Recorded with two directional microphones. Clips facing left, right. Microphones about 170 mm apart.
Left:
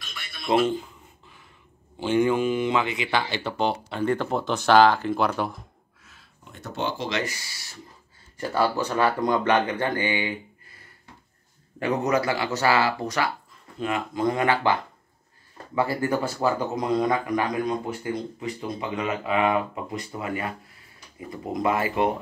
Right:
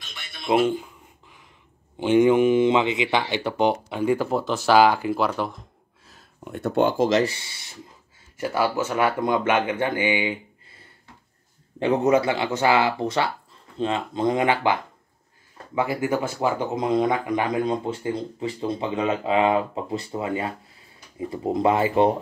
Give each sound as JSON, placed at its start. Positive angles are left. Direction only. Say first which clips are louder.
{"t": 0.1, "sound": "a sound", "louder": "right 1 dB", "side_deg": -25}
{"t": 0.5, "sound": "speech", "louder": "right 1 dB", "side_deg": -10}
{"t": 2.0, "sound": "speech", "louder": "right 5 dB", "side_deg": -20}
{"t": 6.4, "sound": "speech", "louder": "right 9 dB", "side_deg": -55}
{"t": 7.2, "sound": "speech", "louder": "right 3 dB", "side_deg": -25}
{"t": 8.4, "sound": "speech", "louder": "right 1 dB", "side_deg": -10}
{"t": 11.8, "sound": "speech", "louder": "right 4 dB", "side_deg": -25}